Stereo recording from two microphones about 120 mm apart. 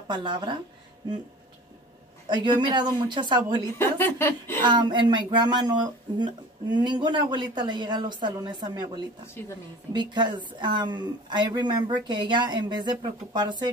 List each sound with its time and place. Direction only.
0.1 s speech: 40° right (ahead or behind)
2.2 s speech: 40° right (ahead or behind)
3.6 s a woman's voice: 20° left (ahead or behind)
4.6 s speech: 40° right (ahead or behind)